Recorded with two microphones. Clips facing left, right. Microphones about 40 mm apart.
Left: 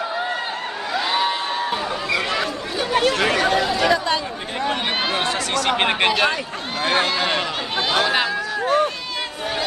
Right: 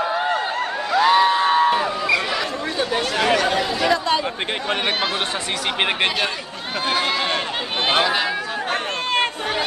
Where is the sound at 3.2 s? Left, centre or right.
Centre.